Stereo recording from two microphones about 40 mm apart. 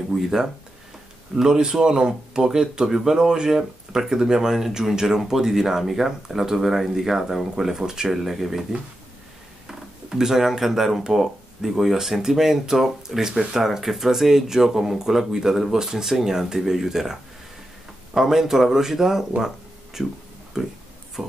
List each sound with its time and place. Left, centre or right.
0.1 s speech: centre
8.2 s speech: centre
9.7 s speech: centre
13.3 s speech: right
13.6 s speech: centre